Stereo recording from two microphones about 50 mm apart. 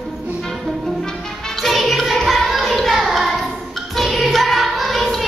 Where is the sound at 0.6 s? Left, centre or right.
Centre.